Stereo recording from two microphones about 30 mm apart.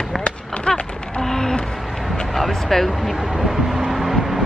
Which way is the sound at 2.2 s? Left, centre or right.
Centre.